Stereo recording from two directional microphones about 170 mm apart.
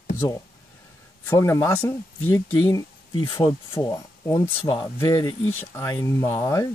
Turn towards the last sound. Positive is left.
turn(degrees=15)  # may be behind; listen again after turning